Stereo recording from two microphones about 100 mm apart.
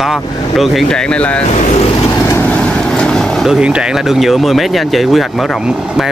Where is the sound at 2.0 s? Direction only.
30° left (ahead or behind).